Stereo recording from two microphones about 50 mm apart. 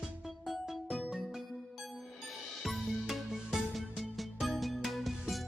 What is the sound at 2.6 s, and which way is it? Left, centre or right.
Music, centre.